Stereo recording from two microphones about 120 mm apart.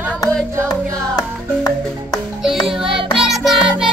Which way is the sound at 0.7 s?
30° left (ahead or behind).